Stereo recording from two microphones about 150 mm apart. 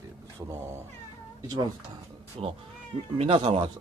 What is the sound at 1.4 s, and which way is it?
Speech, 30° right (ahead or behind).